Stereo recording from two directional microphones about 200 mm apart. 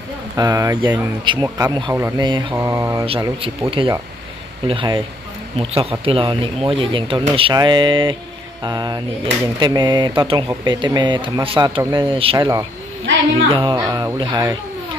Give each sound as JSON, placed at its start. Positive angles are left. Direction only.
{"t": 0.4, "sound": "speech", "side_deg": -15}
{"t": 2.0, "sound": "mantra", "side_deg": -10}
{"t": 2.2, "sound": "speech", "side_deg": -25}
{"t": 2.5, "sound": "mantra", "side_deg": -15}
{"t": 3.1, "sound": "speech", "side_deg": -25}
{"t": 13.0, "sound": "a woman's voice", "side_deg": -70}
{"t": 13.5, "sound": "speech", "side_deg": -25}